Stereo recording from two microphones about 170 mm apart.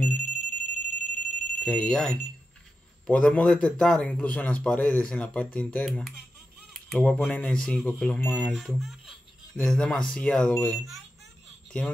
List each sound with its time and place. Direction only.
0.0 s alarm: 5° left (ahead or behind)
0.3 s alarm: 50° left (ahead or behind)
1.1 s alarm: 5° left (ahead or behind)
3.1 s a man's voice: 5° left (ahead or behind)